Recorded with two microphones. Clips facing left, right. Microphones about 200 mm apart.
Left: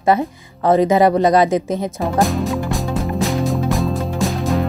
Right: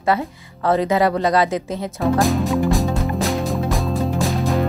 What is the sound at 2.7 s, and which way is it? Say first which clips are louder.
Music: right 1 dB; centre (ahead or behind).